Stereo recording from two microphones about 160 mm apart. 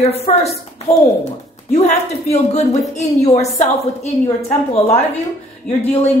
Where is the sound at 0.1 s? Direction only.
40° left (ahead or behind).